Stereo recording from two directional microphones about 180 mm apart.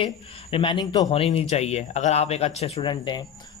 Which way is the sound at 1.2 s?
35° left (ahead or behind).